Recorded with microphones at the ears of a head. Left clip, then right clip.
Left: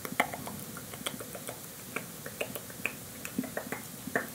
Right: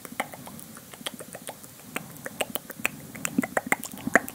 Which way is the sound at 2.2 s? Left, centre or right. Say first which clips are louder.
Right 6 dB; right.